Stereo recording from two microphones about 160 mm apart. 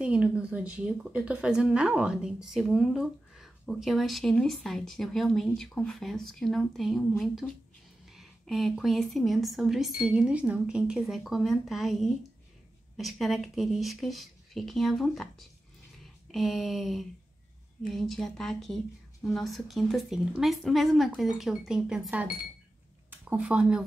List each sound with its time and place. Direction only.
0.0 s a woman's voice: 5° right (ahead or behind)